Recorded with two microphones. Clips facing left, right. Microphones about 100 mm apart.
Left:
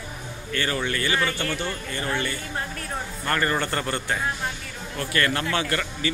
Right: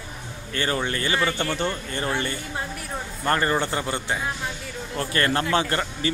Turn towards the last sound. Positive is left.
turn(degrees=-30)  # may be behind; listen again after turning